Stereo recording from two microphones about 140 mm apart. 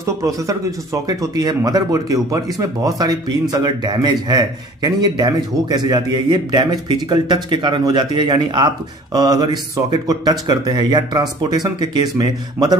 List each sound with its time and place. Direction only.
0.5 s speech: 25° right (ahead or behind)